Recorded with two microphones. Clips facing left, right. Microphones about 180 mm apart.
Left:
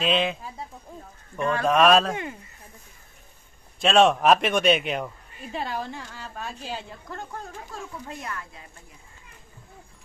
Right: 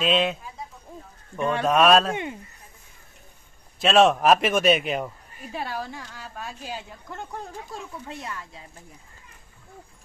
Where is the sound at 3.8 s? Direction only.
Centre (ahead or behind).